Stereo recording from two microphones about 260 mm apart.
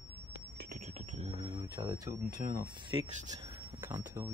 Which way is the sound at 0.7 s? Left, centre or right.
Right.